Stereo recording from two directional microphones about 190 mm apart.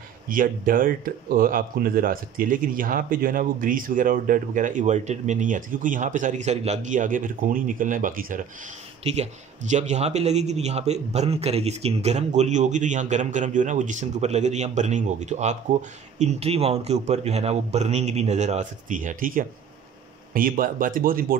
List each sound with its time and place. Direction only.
0.3 s speech: 45° right (ahead or behind)
9.0 s speech: 35° right (ahead or behind)